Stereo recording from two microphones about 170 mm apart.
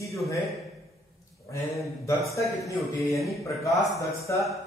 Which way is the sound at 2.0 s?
20° left (ahead or behind).